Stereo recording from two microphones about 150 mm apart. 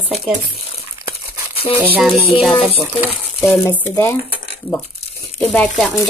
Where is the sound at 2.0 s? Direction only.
Centre (ahead or behind).